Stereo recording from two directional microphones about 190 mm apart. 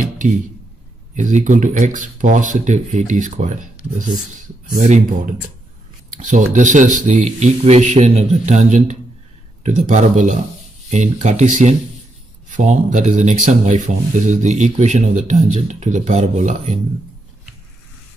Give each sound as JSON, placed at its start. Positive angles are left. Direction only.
{"t": 1.1, "sound": "speech", "side_deg": -40}